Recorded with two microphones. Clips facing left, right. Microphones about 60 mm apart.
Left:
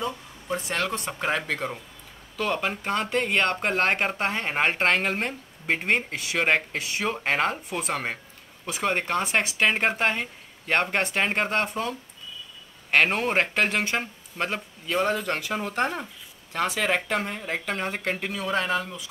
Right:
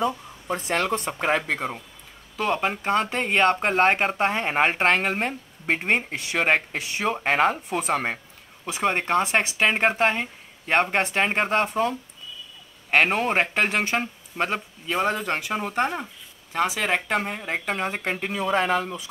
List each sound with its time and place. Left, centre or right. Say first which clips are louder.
0.9 s speech: right 4 dB; right
1.4 s speech: right 2 dB; centre
11.7 s speech: right 6 dB; right
18.3 s speech: right 5 dB; right